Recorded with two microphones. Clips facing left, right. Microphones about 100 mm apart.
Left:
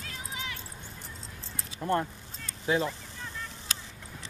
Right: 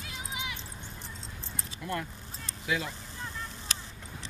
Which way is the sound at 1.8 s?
35° left (ahead or behind).